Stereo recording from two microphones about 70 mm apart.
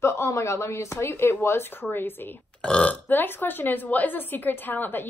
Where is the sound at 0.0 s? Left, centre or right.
Left.